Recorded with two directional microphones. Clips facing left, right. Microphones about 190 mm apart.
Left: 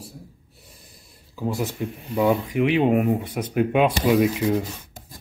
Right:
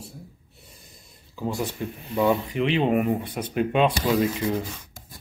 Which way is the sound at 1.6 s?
10° left (ahead or behind).